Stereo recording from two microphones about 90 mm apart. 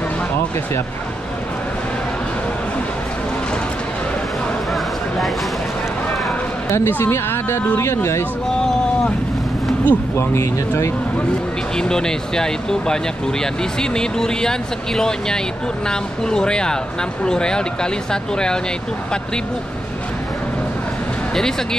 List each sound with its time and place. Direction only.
6.9 s speech: 25° left (ahead or behind)
9.8 s speech: 30° left (ahead or behind)
11.7 s speech: 5° left (ahead or behind)